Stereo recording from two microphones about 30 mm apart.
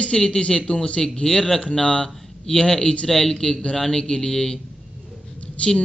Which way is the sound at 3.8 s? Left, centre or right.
Left.